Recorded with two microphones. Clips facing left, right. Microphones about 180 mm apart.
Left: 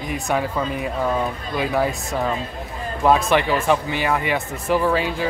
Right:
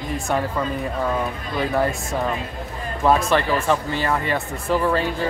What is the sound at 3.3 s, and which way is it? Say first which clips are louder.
Speech: left 1 dB; 15° left (ahead or behind).